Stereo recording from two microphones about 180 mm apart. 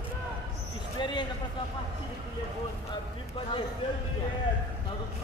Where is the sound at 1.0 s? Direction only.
25° left (ahead or behind).